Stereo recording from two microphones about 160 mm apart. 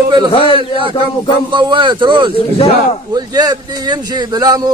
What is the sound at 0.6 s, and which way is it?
Speech, 30° right (ahead or behind).